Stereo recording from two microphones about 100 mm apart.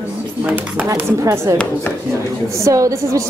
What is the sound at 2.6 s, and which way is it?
Speech, 35° right (ahead or behind).